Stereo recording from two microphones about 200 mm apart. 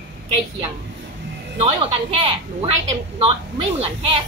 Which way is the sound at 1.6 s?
30° right (ahead or behind).